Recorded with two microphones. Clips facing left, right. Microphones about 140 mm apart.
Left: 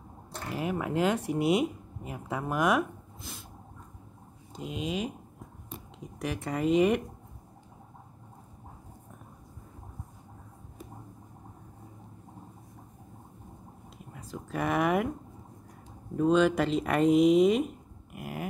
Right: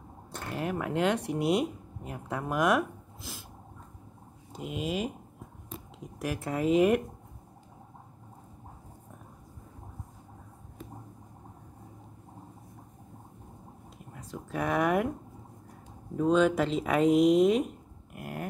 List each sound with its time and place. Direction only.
0.5 s speech: 5° left (ahead or behind)
4.5 s speech: 5° right (ahead or behind)
6.1 s speech: 5° right (ahead or behind)
14.1 s speech: centre (ahead or behind)
16.2 s speech: centre (ahead or behind)